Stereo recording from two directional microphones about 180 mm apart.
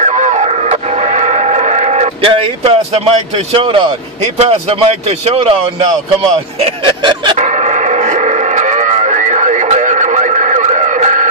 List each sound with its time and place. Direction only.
0.0 s music: 40° right (ahead or behind)
4.4 s speech: 35° right (ahead or behind)
7.3 s radio: 40° right (ahead or behind)